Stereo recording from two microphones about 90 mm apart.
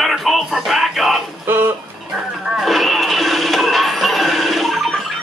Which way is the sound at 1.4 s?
25° right (ahead or behind).